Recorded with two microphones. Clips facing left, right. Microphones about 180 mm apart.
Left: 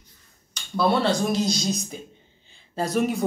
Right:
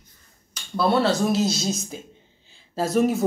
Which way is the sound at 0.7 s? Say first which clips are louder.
Right 1 dB; centre (ahead or behind).